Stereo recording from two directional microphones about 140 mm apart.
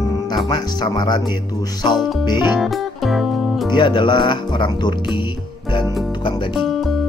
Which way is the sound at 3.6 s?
35° left (ahead or behind).